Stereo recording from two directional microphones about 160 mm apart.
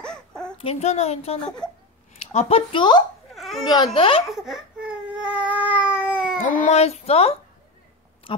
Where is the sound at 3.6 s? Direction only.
25° left (ahead or behind).